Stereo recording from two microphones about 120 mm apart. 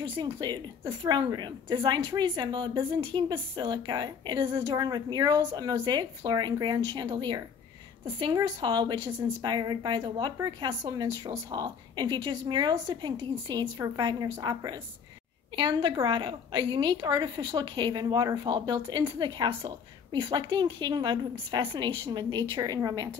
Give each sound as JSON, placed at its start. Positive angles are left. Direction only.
{"t": 0.0, "sound": "a woman's voice", "side_deg": -40}